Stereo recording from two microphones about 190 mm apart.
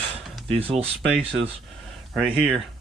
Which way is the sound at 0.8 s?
5° right (ahead or behind).